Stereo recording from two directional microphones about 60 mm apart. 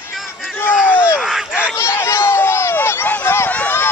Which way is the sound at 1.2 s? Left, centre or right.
Centre.